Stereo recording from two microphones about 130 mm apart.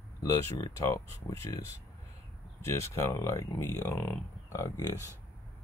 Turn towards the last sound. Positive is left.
turn(degrees=20)  # may be behind; listen again after turning